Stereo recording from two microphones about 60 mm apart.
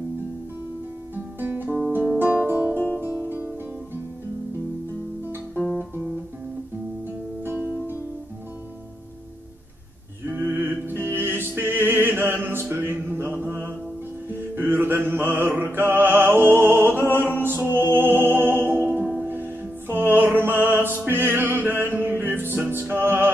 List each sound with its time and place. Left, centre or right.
1.1 s guitar: right
2.1 s music: right
5.6 s guitar: centre
7.5 s music: left
10.2 s music: right